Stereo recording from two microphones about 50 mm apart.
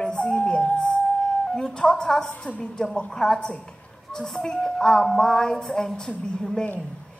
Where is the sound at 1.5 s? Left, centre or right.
Centre.